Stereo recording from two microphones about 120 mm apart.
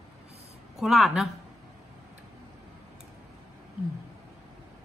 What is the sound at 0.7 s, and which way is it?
Speech, centre (ahead or behind).